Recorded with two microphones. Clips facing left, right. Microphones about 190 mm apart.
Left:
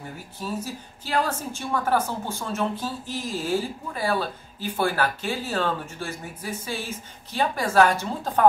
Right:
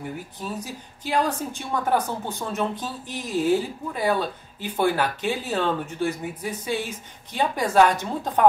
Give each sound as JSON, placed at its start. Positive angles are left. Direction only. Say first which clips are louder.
{"t": 0.4, "sound": "speech", "louder": "left 6 dB", "side_deg": -15}